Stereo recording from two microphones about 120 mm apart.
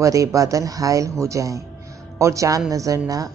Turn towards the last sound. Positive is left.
turn(degrees=-30)  # may be behind; listen again after turning